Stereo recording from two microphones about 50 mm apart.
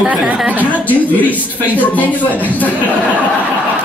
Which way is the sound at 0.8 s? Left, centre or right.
Left.